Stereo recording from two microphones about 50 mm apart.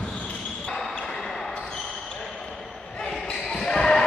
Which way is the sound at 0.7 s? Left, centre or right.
Centre.